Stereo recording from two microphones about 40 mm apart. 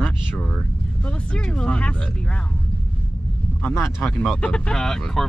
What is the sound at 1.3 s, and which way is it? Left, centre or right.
Speech, left.